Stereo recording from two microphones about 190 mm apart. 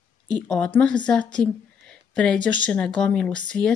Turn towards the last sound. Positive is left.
turn(degrees=5)  # may be behind; listen again after turning